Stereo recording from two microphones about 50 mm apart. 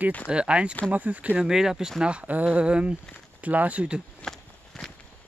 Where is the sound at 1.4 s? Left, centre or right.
Centre.